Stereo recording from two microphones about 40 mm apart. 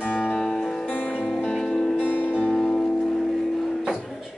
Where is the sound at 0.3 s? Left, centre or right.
Centre.